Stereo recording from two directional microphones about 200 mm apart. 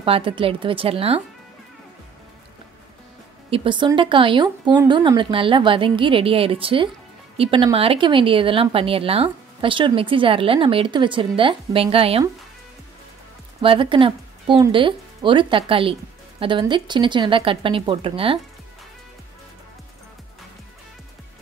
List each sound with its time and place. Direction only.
0.0 s speech: 25° right (ahead or behind)
3.4 s speech: 25° right (ahead or behind)
13.6 s speech: 25° right (ahead or behind)